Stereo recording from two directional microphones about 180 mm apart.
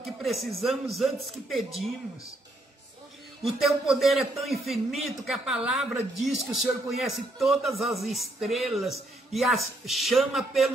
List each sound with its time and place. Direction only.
0.0 s a man's voice: centre (ahead or behind)
3.4 s a man's voice: centre (ahead or behind)